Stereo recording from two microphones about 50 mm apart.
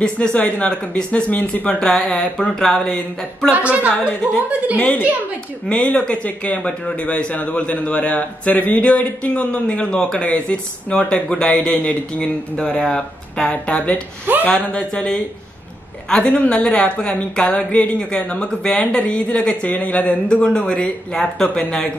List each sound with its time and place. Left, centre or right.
0.0 s speech: left
1.9 s speech: centre
3.5 s a woman's voice: right
5.7 s speech: left
11.2 s speech: centre
14.8 s speech: centre